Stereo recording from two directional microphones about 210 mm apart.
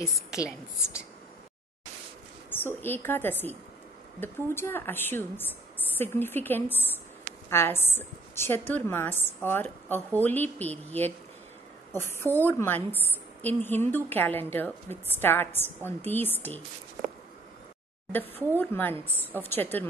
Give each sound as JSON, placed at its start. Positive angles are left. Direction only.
{"t": 2.5, "sound": "a woman's voice", "side_deg": 10}
{"t": 18.1, "sound": "a woman's voice", "side_deg": 10}
{"t": 19.0, "sound": "a woman's voice", "side_deg": -10}
{"t": 19.4, "sound": "a woman's voice", "side_deg": 10}